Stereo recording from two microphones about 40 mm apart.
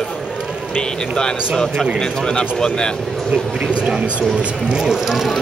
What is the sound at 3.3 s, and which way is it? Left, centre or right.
A man's voice, right.